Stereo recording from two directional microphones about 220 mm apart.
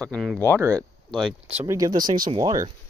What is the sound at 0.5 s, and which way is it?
Speech, 15° right (ahead or behind).